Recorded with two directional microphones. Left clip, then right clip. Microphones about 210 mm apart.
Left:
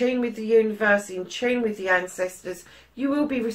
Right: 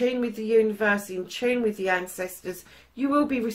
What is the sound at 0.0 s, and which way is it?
Speech, 45° right (ahead or behind).